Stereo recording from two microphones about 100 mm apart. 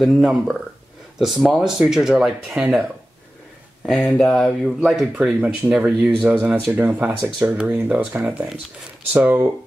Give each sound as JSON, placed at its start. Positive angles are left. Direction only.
{"t": 0.0, "sound": "speech", "side_deg": 0}
{"t": 5.1, "sound": "speech", "side_deg": -15}
{"t": 9.1, "sound": "speech", "side_deg": -20}